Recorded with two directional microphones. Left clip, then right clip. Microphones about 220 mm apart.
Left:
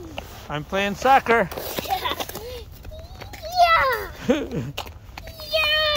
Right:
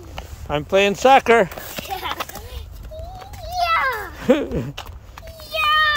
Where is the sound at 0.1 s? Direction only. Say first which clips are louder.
Right 7 dB; 25° right (ahead or behind).